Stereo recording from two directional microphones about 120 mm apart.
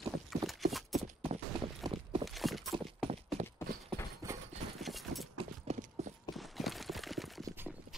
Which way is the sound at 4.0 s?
20° left (ahead or behind).